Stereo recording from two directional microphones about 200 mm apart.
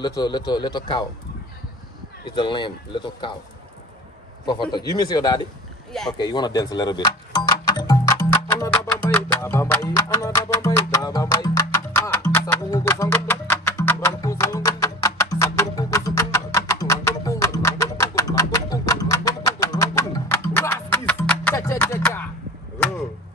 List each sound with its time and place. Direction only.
0.2 s speech: 20° left (ahead or behind)
2.2 s speech: 25° left (ahead or behind)
4.5 s speech: 20° left (ahead or behind)
6.1 s music: 20° left (ahead or behind)